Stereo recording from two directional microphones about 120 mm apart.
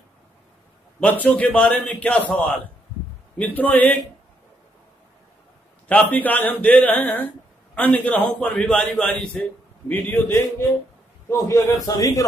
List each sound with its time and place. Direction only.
1.2 s a man's voice: 10° left (ahead or behind)
3.3 s a man's voice: 15° left (ahead or behind)
5.9 s a man's voice: 15° left (ahead or behind)
11.2 s a man's voice: 25° left (ahead or behind)